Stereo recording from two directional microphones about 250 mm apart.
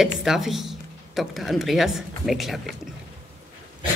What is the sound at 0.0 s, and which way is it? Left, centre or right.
Speech, centre.